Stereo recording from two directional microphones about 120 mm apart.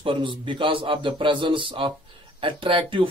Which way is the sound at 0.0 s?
45° right (ahead or behind).